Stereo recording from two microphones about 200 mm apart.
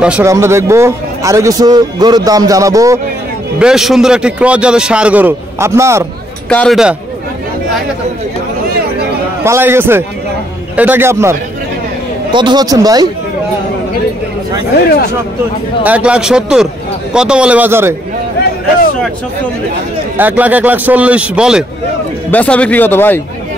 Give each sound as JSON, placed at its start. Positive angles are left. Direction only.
{"t": 0.0, "sound": "a man's voice", "side_deg": -10}
{"t": 3.5, "sound": "a man's voice", "side_deg": -5}
{"t": 6.5, "sound": "a man's voice", "side_deg": 5}
{"t": 9.4, "sound": "a man's voice", "side_deg": -10}
{"t": 12.3, "sound": "speech", "side_deg": -25}
{"t": 15.8, "sound": "a man's voice", "side_deg": -5}
{"t": 20.2, "sound": "a man's voice", "side_deg": -10}
{"t": 22.3, "sound": "speech", "side_deg": 5}